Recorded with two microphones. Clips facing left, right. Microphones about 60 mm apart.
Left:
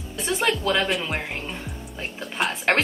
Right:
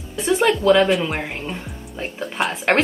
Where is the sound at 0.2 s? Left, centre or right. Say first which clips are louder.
Right 6 dB; centre.